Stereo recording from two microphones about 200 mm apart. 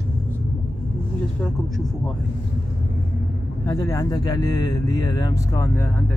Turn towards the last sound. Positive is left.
turn(degrees=15)  # may be behind; listen again after turning